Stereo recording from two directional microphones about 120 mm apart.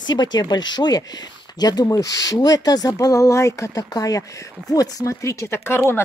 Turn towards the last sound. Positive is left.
turn(degrees=20)  # may be behind; listen again after turning